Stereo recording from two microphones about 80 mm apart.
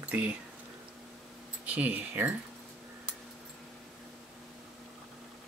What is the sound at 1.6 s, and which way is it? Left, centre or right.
Speech, centre.